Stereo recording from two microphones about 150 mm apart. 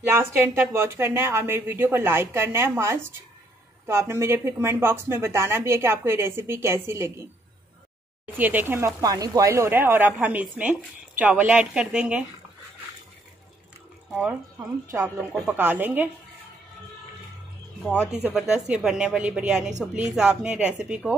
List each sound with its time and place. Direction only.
0.1 s speech: 15° right (ahead or behind)
8.4 s speech: 10° right (ahead or behind)
14.9 s speech: 15° right (ahead or behind)
18.1 s a woman's voice: 5° right (ahead or behind)